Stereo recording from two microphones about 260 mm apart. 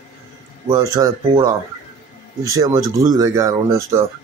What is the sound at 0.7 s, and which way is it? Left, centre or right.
Speech, centre.